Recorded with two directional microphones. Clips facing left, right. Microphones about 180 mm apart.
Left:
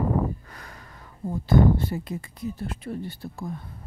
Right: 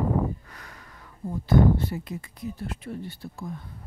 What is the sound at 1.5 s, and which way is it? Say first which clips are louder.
Speech: left 1 dB; 30° left (ahead or behind).